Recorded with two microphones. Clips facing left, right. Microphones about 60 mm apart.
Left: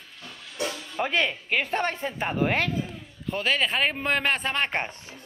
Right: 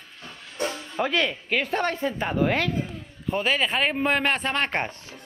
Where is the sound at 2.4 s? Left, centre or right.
Left.